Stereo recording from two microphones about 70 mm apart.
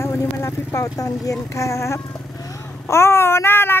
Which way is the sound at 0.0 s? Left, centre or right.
Left.